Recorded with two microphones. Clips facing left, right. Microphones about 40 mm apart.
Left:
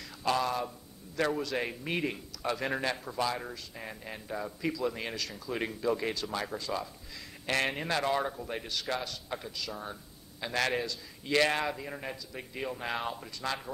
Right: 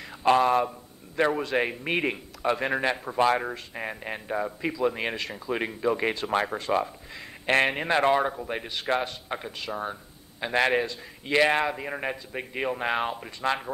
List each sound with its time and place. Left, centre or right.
0.0 s a man's voice: right